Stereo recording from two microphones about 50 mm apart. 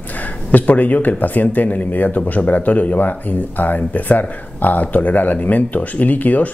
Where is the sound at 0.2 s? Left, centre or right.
Left.